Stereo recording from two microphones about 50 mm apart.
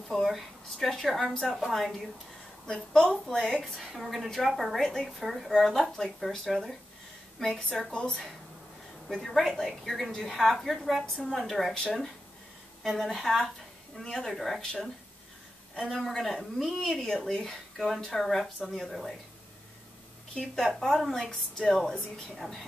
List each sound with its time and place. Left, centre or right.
0.1 s a woman's voice: centre
1.5 s a woman's voice: centre
2.6 s a woman's voice: centre
7.9 s a woman's voice: centre
9.1 s a woman's voice: centre
15.9 s a woman's voice: centre
17.7 s a woman's voice: centre
20.8 s a woman's voice: centre